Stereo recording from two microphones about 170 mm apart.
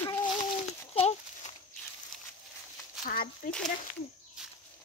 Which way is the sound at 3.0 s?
60° left (ahead or behind).